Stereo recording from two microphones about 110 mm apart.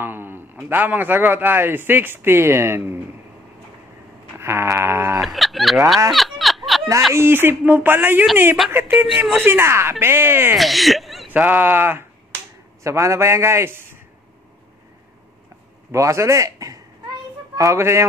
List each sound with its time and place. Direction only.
0.0 s a man's voice: 20° right (ahead or behind)
4.4 s a sound: 25° right (ahead or behind)
5.2 s fowl: centre (ahead or behind)
6.1 s a sound: centre (ahead or behind)
7.2 s a man's voice: 20° right (ahead or behind)
8.6 s a woman's voice: centre (ahead or behind)
9.4 s a man's voice: 20° right (ahead or behind)
10.5 s speech: centre (ahead or behind)
11.2 s a man's voice: 15° right (ahead or behind)
15.9 s a man's voice: 25° right (ahead or behind)